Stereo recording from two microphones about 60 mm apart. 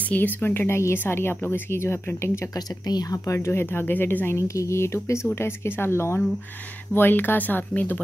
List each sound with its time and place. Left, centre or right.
0.0 s speech: left
2.5 s speech: left
3.3 s speech: left
4.4 s speech: left
6.9 s speech: left